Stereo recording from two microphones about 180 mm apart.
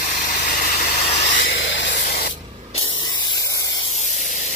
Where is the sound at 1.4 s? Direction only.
90° left.